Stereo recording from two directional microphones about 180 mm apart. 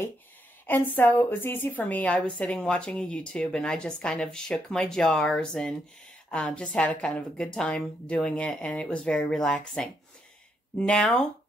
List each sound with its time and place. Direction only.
0.7 s a woman's voice: 10° left (ahead or behind)